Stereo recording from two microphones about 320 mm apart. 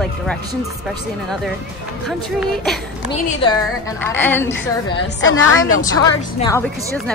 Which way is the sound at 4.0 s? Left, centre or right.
Centre.